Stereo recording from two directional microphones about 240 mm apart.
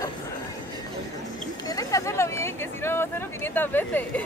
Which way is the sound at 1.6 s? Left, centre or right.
Centre.